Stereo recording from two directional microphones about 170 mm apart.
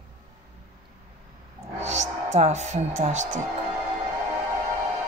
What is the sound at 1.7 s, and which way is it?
Speech, 45° right (ahead or behind).